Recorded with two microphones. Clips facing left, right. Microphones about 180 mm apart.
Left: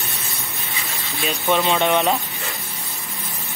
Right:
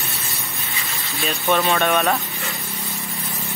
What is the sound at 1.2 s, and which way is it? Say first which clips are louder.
Speech: even; 15° left (ahead or behind).